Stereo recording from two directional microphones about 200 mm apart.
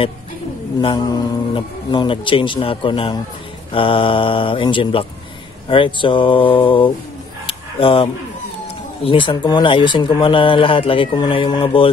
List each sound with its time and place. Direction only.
0.7 s speech: 20° left (ahead or behind)
7.4 s a sound: 25° left (ahead or behind)
9.0 s speech: 25° left (ahead or behind)